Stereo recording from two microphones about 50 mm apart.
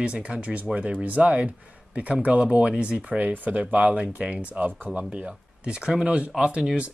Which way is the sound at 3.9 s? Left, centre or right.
Right.